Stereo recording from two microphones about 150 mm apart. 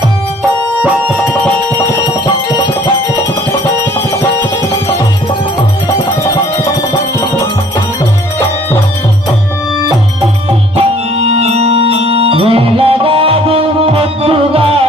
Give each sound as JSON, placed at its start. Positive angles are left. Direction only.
{"t": 2.2, "sound": "music", "side_deg": 30}
{"t": 10.8, "sound": "music", "side_deg": -45}